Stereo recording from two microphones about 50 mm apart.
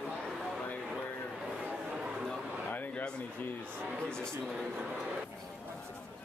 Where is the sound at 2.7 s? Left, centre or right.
Left.